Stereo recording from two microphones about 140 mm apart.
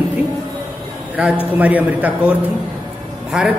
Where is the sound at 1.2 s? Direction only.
10° right (ahead or behind).